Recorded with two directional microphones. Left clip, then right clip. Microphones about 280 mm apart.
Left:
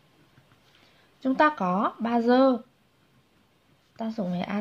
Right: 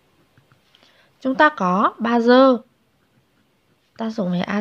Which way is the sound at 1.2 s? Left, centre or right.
Right.